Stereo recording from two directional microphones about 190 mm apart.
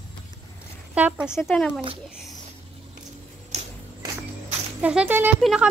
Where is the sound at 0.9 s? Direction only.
5° right (ahead or behind).